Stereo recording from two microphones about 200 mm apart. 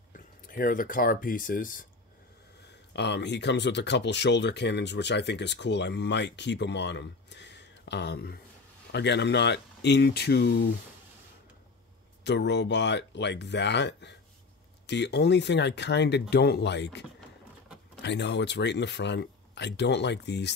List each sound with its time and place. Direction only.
0.1 s speech: 45° left (ahead or behind)
2.9 s speech: 60° left (ahead or behind)
12.3 s speech: 60° left (ahead or behind)
18.0 s speech: 60° left (ahead or behind)